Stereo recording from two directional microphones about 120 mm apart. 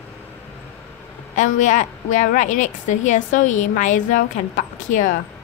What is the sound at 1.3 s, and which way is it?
A woman's voice, 90° left.